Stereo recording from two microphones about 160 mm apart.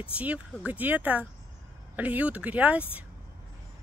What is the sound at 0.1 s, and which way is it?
Speech, 10° right (ahead or behind).